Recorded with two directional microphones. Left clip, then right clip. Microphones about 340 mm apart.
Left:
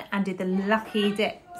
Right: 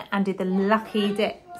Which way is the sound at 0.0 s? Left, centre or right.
Centre.